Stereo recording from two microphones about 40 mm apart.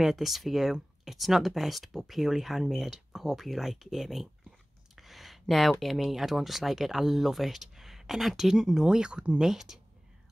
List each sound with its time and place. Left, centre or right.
0.0 s speech: centre